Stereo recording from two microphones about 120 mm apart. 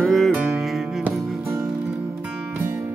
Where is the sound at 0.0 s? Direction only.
Centre (ahead or behind).